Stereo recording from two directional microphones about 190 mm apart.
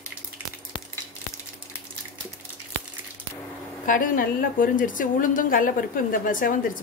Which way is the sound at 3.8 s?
45° left (ahead or behind).